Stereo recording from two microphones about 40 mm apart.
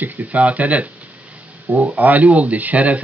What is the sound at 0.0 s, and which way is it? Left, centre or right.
Speech, right.